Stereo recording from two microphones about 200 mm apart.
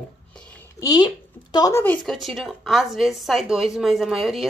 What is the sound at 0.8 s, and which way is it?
A woman's voice, 20° left (ahead or behind).